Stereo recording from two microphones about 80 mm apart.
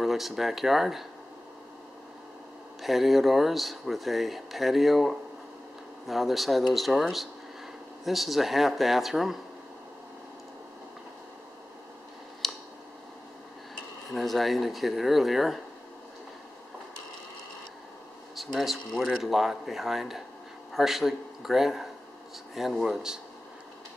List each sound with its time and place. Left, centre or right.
0.0 s speech: centre
2.8 s speech: centre
12.4 s scissors: centre
14.1 s speech: centre
18.3 s speech: centre